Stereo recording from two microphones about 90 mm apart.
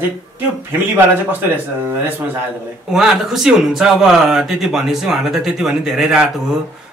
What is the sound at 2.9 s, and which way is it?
Speech, 5° right (ahead or behind).